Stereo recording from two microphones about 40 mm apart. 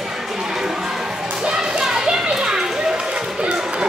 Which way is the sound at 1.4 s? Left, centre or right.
Centre.